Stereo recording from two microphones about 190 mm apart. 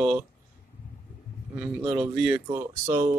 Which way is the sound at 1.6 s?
5° right (ahead or behind).